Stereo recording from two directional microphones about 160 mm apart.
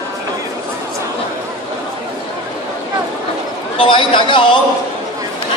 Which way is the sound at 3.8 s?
30° left (ahead or behind).